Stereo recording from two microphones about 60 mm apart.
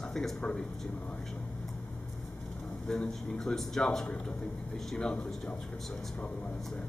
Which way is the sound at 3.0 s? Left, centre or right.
Centre.